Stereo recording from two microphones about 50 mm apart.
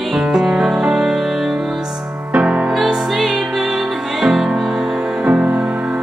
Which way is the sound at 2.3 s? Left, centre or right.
Right.